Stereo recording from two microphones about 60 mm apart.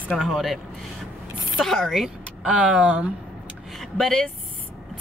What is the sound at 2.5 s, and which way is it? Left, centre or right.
Speech, right.